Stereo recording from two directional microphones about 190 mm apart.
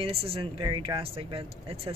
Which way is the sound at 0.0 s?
30° right (ahead or behind).